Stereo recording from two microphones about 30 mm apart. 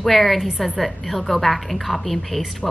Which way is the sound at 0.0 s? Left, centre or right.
Centre.